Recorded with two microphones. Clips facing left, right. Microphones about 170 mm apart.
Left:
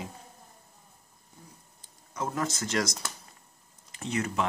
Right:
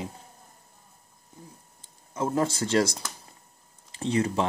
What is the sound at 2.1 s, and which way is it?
Speech, 25° right (ahead or behind).